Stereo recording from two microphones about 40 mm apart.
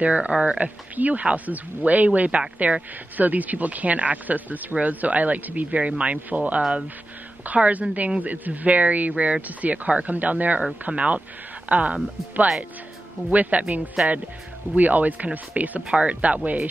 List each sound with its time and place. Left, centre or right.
0.0 s speech: right
0.9 s speech: right
15.9 s speech: right